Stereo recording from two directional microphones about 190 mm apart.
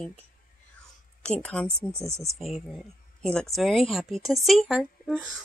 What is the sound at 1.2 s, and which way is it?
Speech, 5° left (ahead or behind).